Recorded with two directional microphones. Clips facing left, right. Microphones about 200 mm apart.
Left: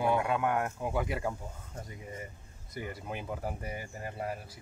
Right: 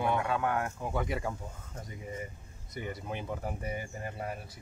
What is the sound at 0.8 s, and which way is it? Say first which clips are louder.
Speech: left 1 dB; 5° left (ahead or behind).